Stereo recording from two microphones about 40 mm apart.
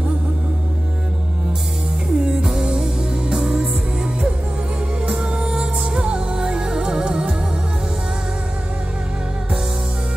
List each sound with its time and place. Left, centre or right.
2.1 s music: right
5.3 s music: centre